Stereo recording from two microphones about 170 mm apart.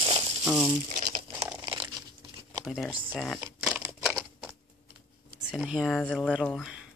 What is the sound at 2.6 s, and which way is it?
Speech, centre (ahead or behind).